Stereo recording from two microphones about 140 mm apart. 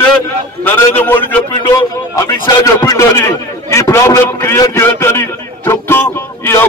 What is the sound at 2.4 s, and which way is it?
A man's voice, 25° left (ahead or behind).